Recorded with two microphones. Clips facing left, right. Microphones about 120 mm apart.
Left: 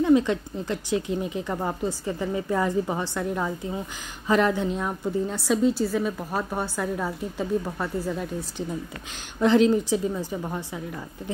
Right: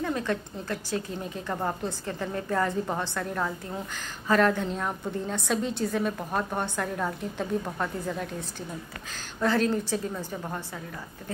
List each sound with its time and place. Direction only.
0.0 s a woman's voice: 15° left (ahead or behind)
1.3 s a woman's voice: 5° left (ahead or behind)
9.7 s a woman's voice: 10° left (ahead or behind)